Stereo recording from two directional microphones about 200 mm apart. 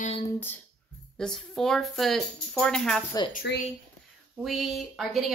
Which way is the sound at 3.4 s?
60° left (ahead or behind).